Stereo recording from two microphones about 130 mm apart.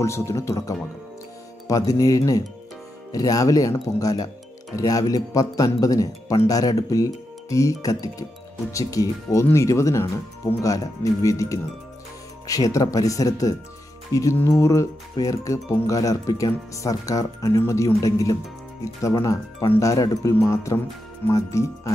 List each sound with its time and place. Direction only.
0.0 s speech: 20° left (ahead or behind)
19.7 s speech: 25° left (ahead or behind)